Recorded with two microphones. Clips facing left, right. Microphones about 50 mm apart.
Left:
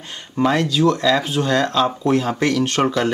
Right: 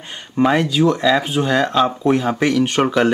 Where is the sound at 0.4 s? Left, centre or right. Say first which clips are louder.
Right 2 dB; centre.